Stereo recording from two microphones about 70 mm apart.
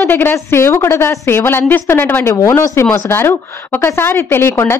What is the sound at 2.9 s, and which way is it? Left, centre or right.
A woman's voice, left.